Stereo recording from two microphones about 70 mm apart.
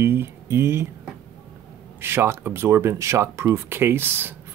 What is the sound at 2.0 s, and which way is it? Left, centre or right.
Speech, right.